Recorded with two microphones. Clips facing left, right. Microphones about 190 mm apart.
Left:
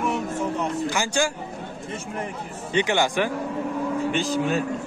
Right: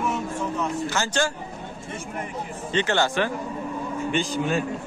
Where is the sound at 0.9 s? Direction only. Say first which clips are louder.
Left 1 dB; 10° left (ahead or behind).